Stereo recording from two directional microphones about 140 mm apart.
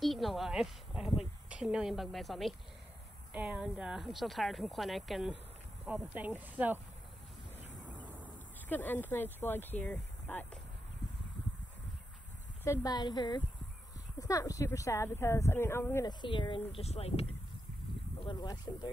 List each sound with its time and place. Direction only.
0.0 s speech: centre (ahead or behind)
8.6 s speech: 10° left (ahead or behind)
12.6 s speech: 25° left (ahead or behind)
16.1 s speech: 35° left (ahead or behind)
18.2 s speech: 30° left (ahead or behind)